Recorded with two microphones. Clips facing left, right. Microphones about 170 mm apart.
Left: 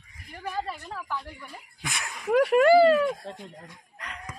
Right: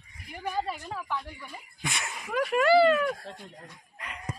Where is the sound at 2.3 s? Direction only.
65° left (ahead or behind); by 2.8 s 50° left (ahead or behind).